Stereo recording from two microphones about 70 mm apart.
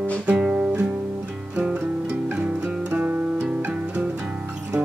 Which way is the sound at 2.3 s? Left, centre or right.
Centre.